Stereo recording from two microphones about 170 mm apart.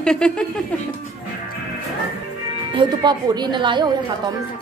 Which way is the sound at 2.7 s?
25° right (ahead or behind).